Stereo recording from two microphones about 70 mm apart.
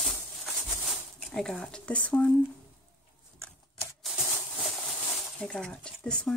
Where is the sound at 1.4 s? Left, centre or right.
Centre.